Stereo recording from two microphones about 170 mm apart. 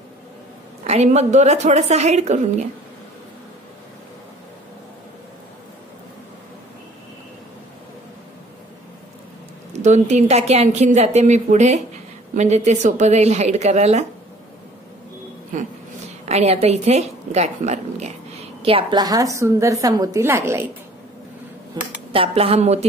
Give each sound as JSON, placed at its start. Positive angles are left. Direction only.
{"t": 0.8, "sound": "a woman's voice", "side_deg": -40}
{"t": 9.7, "sound": "a woman's voice", "side_deg": -45}
{"t": 15.5, "sound": "a sound", "side_deg": -50}
{"t": 16.3, "sound": "a woman's voice", "side_deg": -40}
{"t": 21.8, "sound": "a woman's voice", "side_deg": -25}